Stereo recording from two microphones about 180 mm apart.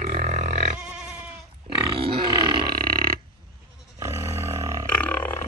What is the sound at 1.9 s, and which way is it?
Grunt, 30° right (ahead or behind).